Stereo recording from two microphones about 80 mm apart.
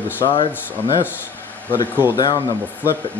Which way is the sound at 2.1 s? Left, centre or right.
Left.